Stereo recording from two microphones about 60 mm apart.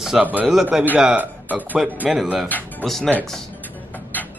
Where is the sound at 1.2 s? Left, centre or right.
Right.